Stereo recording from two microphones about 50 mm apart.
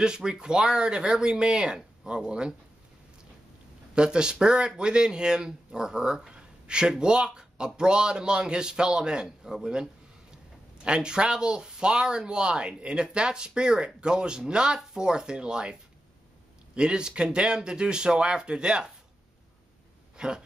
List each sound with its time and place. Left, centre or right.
0.0 s speech: centre
3.9 s speech: centre
20.2 s speech: centre